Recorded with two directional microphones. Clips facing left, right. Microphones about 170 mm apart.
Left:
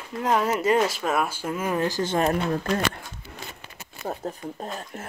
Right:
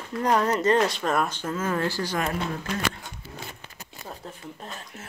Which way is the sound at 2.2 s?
40° left (ahead or behind).